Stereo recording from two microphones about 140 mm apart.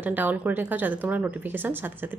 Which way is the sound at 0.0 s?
10° right (ahead or behind).